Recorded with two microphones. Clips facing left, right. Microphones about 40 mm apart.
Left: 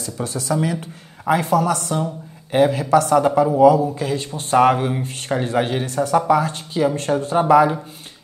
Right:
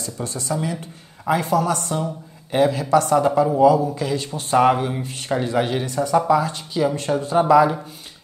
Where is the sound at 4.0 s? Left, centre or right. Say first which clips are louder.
Even; left.